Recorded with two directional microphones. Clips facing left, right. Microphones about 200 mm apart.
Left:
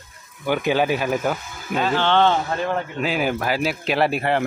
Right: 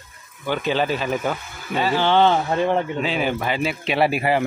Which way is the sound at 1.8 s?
10° right (ahead or behind).